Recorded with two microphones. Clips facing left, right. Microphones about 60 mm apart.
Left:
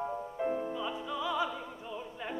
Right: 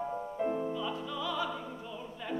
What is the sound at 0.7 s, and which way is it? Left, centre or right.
Music, centre.